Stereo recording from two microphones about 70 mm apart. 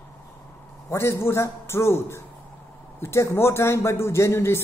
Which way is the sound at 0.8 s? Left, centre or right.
Left.